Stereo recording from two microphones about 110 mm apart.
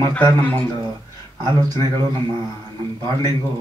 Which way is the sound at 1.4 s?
40° right (ahead or behind).